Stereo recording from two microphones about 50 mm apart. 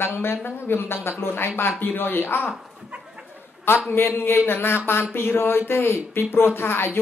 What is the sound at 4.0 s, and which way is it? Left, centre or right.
Speech, left.